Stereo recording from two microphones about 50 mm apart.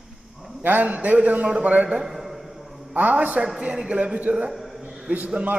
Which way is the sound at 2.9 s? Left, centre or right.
Right.